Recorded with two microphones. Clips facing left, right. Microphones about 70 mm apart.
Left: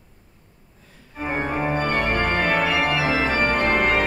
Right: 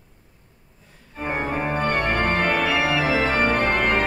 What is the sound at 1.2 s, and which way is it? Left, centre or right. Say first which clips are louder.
Organ: left 1 dB; centre.